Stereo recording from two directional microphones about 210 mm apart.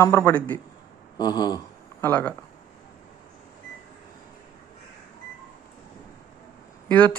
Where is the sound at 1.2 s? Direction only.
20° left (ahead or behind).